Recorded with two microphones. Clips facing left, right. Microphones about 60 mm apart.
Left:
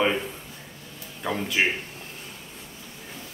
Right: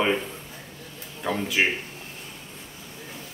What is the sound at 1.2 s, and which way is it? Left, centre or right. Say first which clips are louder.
Speech: right 1 dB; centre.